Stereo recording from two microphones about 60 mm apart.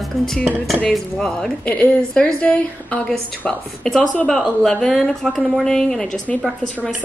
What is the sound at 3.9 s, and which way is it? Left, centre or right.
A woman's voice, centre.